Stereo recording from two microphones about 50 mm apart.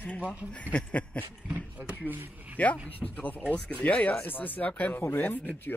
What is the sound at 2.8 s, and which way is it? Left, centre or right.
Speech, left.